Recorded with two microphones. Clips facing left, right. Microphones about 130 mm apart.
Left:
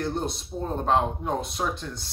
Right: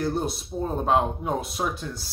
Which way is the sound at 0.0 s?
5° right (ahead or behind).